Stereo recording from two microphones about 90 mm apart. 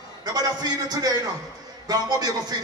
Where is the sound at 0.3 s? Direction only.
45° right (ahead or behind).